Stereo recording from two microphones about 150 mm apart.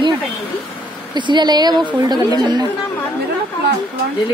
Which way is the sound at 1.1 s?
30° right (ahead or behind).